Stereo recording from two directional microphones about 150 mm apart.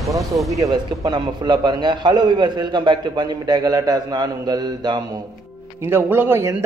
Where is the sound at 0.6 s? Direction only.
25° right (ahead or behind).